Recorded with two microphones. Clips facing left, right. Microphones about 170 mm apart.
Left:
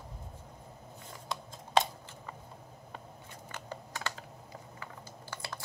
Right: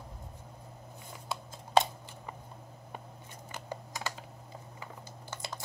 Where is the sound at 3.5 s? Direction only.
15° right (ahead or behind).